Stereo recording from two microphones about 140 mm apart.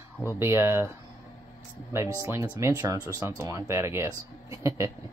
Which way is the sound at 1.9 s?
20° right (ahead or behind).